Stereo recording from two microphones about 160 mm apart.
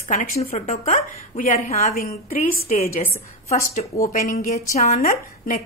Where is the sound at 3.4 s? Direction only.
50° left (ahead or behind).